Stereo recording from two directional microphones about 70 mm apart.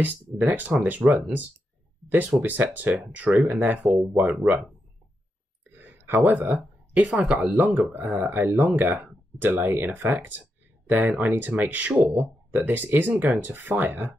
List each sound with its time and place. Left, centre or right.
0.0 s speech: right
5.7 s a sound: right
6.3 s speech: right